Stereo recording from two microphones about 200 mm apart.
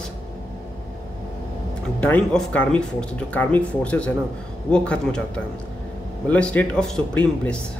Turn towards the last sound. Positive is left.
turn(degrees=5)  # may be behind; listen again after turning